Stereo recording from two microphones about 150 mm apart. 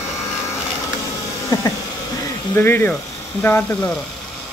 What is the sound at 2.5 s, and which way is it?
Speech, 15° left (ahead or behind).